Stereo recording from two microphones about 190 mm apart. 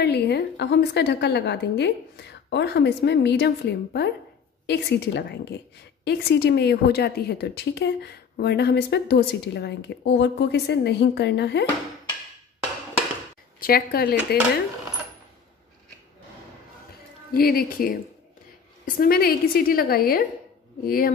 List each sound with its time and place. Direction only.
0.0 s a woman's voice: 60° left (ahead or behind)
13.6 s a woman's voice: 50° left (ahead or behind)
17.3 s a woman's voice: 50° left (ahead or behind)
18.9 s a woman's voice: 55° left (ahead or behind)